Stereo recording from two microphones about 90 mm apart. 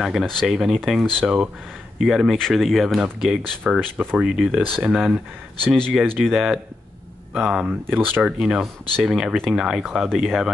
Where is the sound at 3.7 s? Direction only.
20° right (ahead or behind).